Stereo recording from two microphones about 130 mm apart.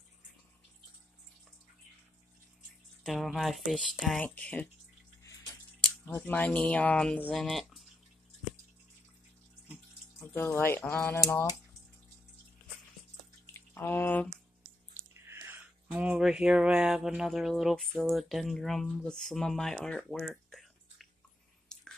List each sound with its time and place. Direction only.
3.0 s speech: centre (ahead or behind)
4.2 s speech: 10° left (ahead or behind)
6.0 s speech: 15° left (ahead or behind)
10.3 s speech: 20° left (ahead or behind)
13.5 s drip: 20° left (ahead or behind)
15.0 s speech: 20° right (ahead or behind); by 21.1 s centre (ahead or behind)
21.7 s chewing: 5° left (ahead or behind)